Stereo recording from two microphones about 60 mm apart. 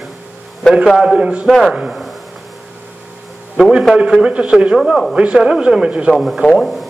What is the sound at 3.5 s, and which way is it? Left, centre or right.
Speech, centre.